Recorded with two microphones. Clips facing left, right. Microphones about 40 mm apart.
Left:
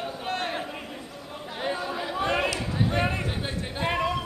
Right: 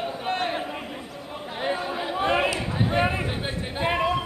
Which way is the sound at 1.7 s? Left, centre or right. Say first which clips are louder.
Right 2 dB; right.